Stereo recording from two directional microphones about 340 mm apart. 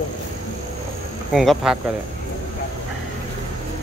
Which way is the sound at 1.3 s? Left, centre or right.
Centre.